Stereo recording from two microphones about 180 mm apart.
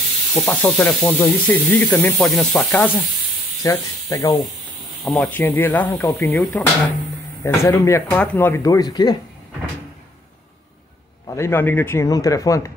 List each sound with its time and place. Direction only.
0.3 s speech: 5° left (ahead or behind)
3.6 s speech: 15° left (ahead or behind)
5.0 s speech: 5° left (ahead or behind); by 9.2 s 25° left (ahead or behind)
11.2 s speech: 15° left (ahead or behind)